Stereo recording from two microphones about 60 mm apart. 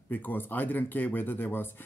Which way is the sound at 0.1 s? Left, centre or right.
Left.